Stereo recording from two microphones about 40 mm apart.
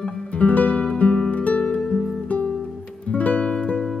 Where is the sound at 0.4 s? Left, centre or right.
Left.